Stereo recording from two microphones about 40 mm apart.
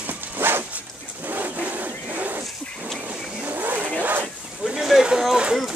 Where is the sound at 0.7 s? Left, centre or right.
Right.